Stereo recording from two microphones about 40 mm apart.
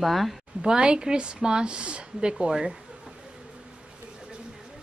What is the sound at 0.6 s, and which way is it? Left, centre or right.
A woman's voice, right.